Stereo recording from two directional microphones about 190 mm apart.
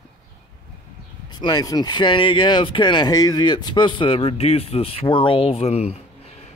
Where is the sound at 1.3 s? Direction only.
20° left (ahead or behind).